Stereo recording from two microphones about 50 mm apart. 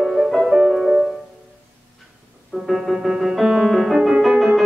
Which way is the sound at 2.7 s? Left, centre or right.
Centre.